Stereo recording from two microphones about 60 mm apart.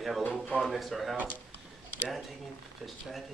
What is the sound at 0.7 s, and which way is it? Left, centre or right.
Speech, centre.